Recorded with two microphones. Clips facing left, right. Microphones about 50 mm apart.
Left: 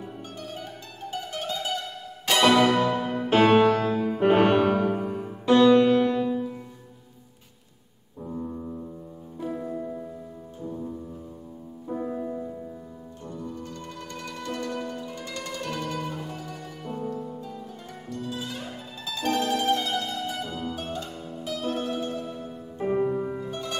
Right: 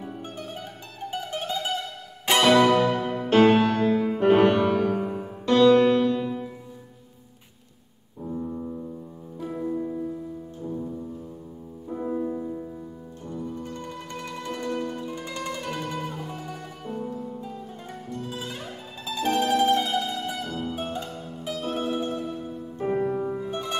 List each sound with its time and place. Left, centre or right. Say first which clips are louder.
1.1 s mandolin: right 2 dB; right
2.4 s music: right 1 dB; centre
3.2 s music: even; centre
5.4 s music: even; centre
8.3 s music: right 2 dB; centre
11.9 s music: right 2 dB; centre
13.2 s music: right 3 dB; centre
18.1 s music: left 1 dB; right
18.6 s music: even; centre
19.2 s mandolin: right 3 dB; centre
21.5 s music: right 1 dB; centre
23.5 s harp: right 3 dB; centre